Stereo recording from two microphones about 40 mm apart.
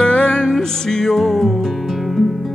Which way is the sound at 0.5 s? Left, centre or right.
Centre.